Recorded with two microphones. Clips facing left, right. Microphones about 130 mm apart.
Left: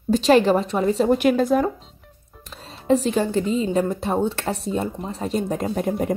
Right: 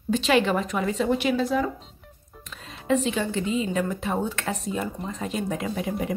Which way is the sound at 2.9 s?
40° left (ahead or behind).